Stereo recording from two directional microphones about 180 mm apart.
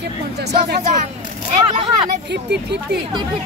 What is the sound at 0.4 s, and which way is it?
Speech, 65° right (ahead or behind).